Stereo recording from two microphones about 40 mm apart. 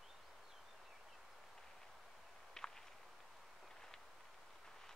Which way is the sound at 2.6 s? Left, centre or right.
Centre.